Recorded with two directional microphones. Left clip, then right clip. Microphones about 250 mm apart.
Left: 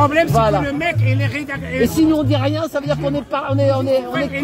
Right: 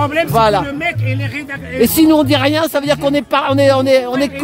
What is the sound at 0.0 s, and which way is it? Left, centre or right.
Speech, centre.